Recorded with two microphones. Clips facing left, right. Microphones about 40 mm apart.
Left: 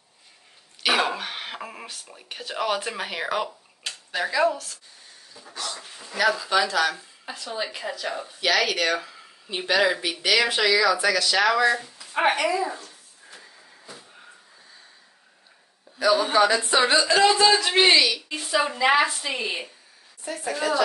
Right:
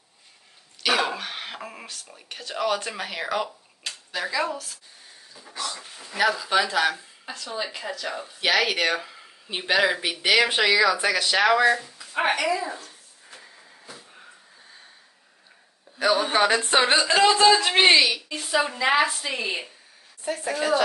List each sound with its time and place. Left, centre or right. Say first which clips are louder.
0.8 s speech: left 1 dB; centre
5.3 s dog: right 1 dB; centre
6.1 s speech: even; centre
7.2 s a woman's voice: left 1 dB; centre
8.4 s speech: right 1 dB; centre
12.2 s a woman's voice: left 1 dB; centre
16.3 s a woman's voice: left 1 dB; right
16.8 s a woman's voice: left 1 dB; right
18.3 s a woman's voice: even; centre